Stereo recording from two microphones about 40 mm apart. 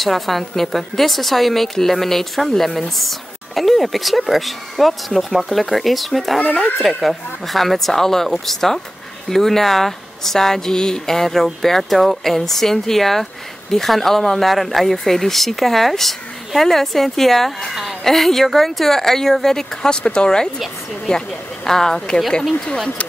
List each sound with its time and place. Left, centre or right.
0.0 s a woman's voice: centre